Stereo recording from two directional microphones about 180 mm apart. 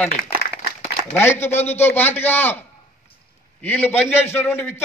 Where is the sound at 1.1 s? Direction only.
15° left (ahead or behind).